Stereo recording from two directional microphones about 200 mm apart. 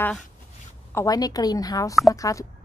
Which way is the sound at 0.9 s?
20° left (ahead or behind).